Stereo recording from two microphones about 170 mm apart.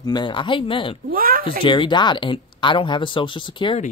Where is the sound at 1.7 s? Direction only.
25° left (ahead or behind).